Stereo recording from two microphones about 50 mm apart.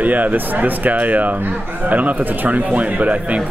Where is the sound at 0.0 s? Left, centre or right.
Right.